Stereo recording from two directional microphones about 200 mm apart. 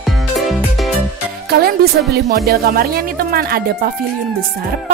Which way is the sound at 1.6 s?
50° right (ahead or behind).